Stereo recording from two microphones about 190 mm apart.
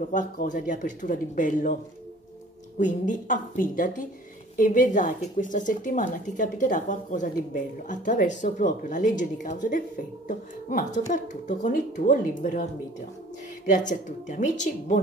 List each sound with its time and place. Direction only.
0.1 s speech: 40° left (ahead or behind)
2.8 s speech: 40° left (ahead or behind)
13.7 s speech: 40° left (ahead or behind)